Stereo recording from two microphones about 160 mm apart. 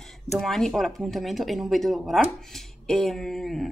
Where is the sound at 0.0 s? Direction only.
Centre (ahead or behind).